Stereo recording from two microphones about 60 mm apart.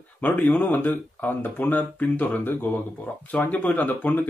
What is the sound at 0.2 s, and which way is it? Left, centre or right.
Speech, left.